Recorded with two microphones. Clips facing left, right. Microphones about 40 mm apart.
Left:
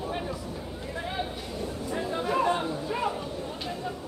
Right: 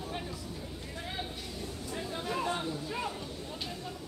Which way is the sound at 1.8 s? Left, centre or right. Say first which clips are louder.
Left 7 dB; left.